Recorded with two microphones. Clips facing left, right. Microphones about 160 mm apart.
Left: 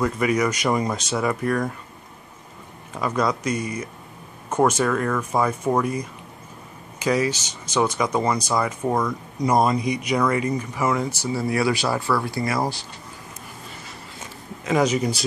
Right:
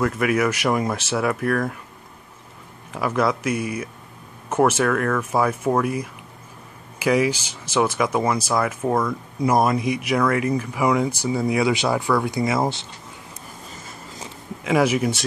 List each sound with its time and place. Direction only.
0.0 s speech: 5° right (ahead or behind)
2.9 s speech: 5° right (ahead or behind); by 12.8 s 20° right (ahead or behind)
14.6 s speech: 10° right (ahead or behind)